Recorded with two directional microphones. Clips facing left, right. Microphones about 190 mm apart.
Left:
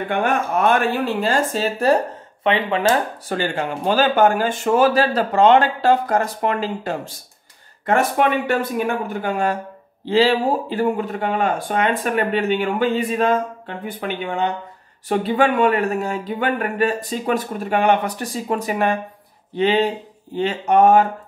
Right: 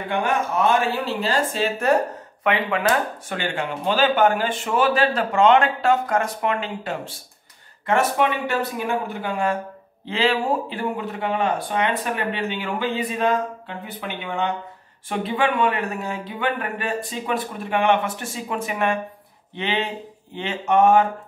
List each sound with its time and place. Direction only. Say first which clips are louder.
0.1 s speech: left 2 dB; 55° left (ahead or behind); by 2.0 s 35° left (ahead or behind)
2.4 s speech: left 3 dB; 25° left (ahead or behind)
7.8 s speech: left 2 dB; 50° left (ahead or behind)